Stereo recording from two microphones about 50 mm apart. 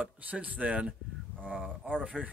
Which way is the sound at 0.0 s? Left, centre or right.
Right.